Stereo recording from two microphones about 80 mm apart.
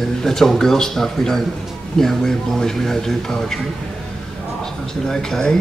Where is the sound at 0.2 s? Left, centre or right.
Centre.